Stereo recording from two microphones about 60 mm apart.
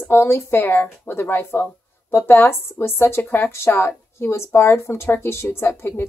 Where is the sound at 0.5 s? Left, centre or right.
Left.